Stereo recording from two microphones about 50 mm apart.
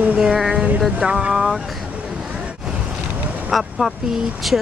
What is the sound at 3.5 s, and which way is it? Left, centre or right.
Speech, centre.